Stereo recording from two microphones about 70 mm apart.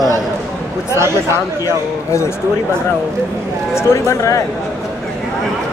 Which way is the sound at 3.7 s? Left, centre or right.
Left.